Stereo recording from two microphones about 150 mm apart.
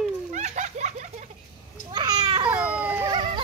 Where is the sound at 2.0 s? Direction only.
25° right (ahead or behind).